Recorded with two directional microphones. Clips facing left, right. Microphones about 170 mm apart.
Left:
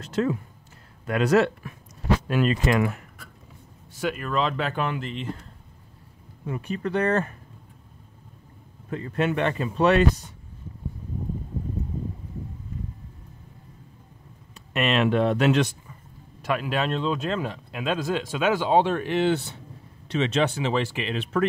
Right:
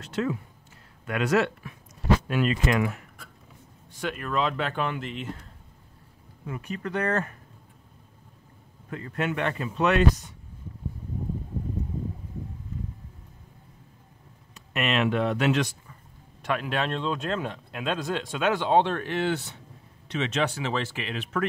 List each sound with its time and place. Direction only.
0.0 s speech: 40° left (ahead or behind)
4.0 s speech: centre (ahead or behind)
6.4 s speech: 30° left (ahead or behind)
8.9 s speech: 30° left (ahead or behind)
14.5 s speech: 30° left (ahead or behind)
16.4 s speech: 5° left (ahead or behind); by 21.5 s 30° left (ahead or behind)